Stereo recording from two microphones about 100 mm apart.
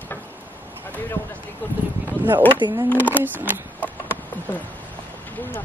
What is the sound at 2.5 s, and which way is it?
Speech, 50° right (ahead or behind).